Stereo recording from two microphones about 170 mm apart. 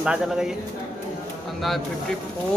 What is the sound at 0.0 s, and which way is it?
Speech, 5° right (ahead or behind).